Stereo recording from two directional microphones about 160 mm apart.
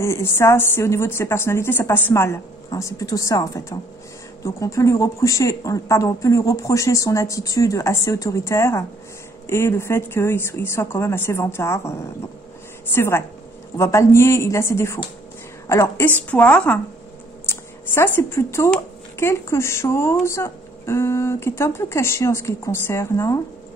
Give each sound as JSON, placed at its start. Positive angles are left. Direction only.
{"t": 0.0, "sound": "a woman's voice", "side_deg": 15}